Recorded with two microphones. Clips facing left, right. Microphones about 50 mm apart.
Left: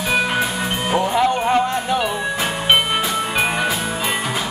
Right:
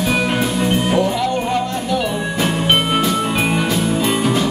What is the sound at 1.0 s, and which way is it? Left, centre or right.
Music, left.